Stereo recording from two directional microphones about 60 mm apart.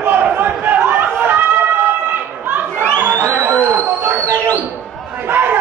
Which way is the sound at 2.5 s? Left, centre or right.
Right.